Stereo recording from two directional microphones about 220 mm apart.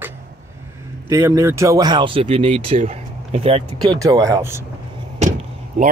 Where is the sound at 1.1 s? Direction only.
15° right (ahead or behind).